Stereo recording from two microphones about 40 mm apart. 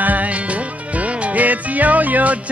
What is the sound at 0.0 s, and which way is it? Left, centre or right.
Music, right.